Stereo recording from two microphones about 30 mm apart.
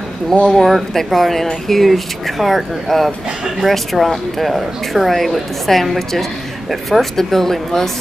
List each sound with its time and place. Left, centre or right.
0.3 s speech: centre
0.7 s a woman's voice: centre